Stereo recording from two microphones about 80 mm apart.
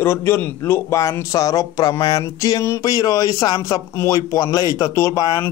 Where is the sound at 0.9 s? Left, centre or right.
Left.